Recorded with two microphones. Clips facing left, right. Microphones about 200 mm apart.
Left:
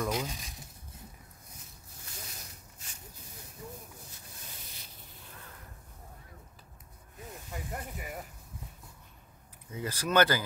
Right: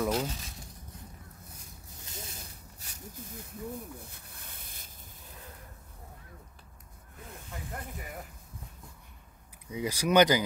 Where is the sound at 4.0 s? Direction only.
60° right (ahead or behind).